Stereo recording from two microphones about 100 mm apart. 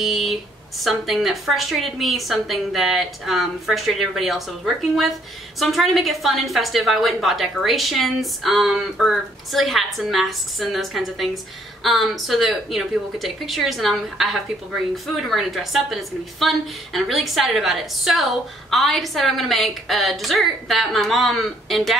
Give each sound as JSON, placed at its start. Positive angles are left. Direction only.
{"t": 0.0, "sound": "a woman's voice", "side_deg": 0}